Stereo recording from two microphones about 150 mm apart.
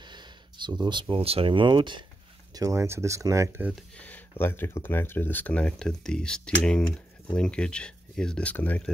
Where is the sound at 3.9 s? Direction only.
10° left (ahead or behind).